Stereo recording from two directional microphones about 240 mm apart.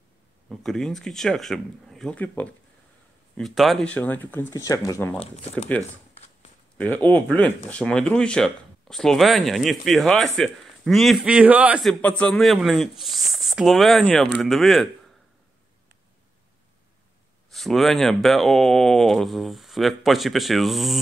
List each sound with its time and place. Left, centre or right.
0.5 s speech: centre
5.2 s speech: left
6.8 s speech: centre
17.5 s speech: centre